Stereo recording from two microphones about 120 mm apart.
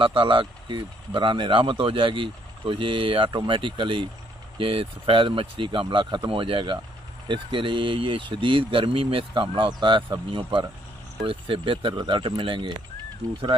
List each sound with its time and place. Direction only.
0.0 s speech: 45° right (ahead or behind)
11.2 s speech: 45° right (ahead or behind)